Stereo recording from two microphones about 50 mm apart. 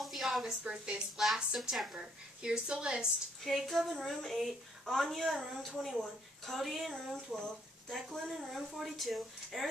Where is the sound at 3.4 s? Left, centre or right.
Centre.